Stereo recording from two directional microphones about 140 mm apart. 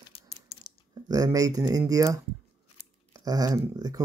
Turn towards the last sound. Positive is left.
turn(degrees=-25)  # may be behind; listen again after turning